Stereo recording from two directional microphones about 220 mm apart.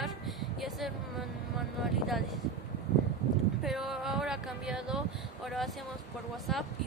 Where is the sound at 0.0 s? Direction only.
Centre (ahead or behind).